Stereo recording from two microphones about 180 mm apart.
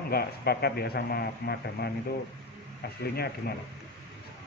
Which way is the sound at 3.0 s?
60° left (ahead or behind).